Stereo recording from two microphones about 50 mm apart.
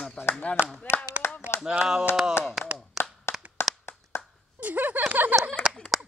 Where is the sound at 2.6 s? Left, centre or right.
Centre.